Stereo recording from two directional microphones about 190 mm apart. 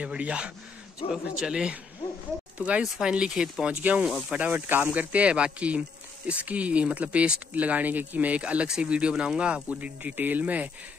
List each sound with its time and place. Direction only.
0.0 s speech: 5° right (ahead or behind)